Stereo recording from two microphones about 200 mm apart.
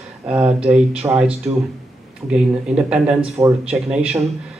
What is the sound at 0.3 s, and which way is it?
A man's voice, 5° right (ahead or behind).